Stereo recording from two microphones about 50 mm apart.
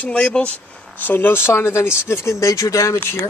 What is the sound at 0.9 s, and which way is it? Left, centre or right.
Speech, left.